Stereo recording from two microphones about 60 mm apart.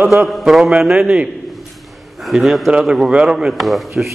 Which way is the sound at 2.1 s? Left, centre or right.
Centre.